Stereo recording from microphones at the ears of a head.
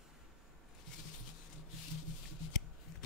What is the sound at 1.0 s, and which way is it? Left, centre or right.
Shuffling cards, left.